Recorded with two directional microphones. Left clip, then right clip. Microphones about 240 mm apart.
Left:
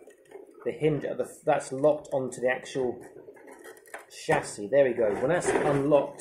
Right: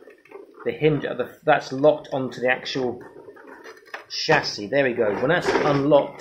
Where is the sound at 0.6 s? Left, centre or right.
Right.